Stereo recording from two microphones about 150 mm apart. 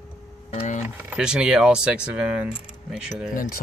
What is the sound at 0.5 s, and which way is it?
Speech, 40° left (ahead or behind).